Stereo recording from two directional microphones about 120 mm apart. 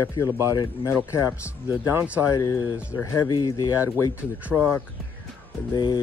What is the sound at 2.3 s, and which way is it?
Speech, 30° left (ahead or behind).